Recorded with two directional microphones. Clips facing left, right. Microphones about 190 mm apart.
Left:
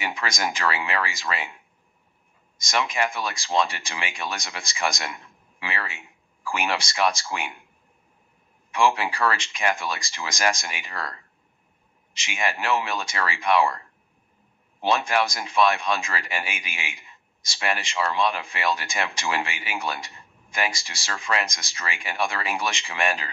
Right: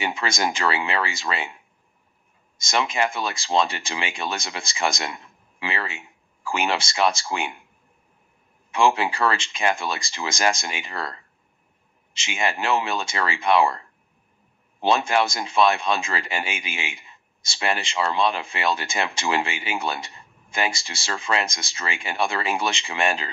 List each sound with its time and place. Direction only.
0.0 s speech: 25° right (ahead or behind)
8.7 s speech: 25° right (ahead or behind)
14.8 s speech: 25° right (ahead or behind)